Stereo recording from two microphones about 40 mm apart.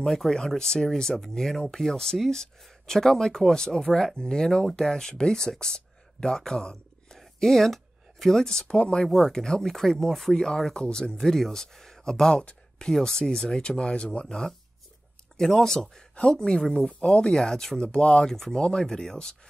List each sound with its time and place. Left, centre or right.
0.3 s speech: centre
8.7 s speech: left
9.3 s speech: centre
11.1 s speech: centre; by 14.2 s left
15.3 s speech: centre
16.2 s speech: left
18.3 s speech: centre
18.6 s speech: centre